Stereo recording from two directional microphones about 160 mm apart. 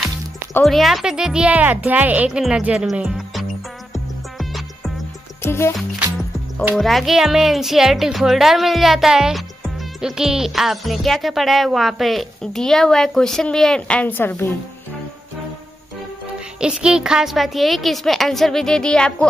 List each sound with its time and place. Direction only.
0.7 s speech: centre (ahead or behind)
5.4 s music: 15° left (ahead or behind)
6.8 s speech: centre (ahead or behind)
16.5 s speech: 5° right (ahead or behind)